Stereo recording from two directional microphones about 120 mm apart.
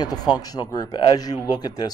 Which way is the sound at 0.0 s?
35° left (ahead or behind).